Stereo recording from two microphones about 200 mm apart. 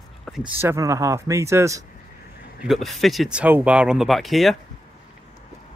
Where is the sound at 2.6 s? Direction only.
Centre (ahead or behind).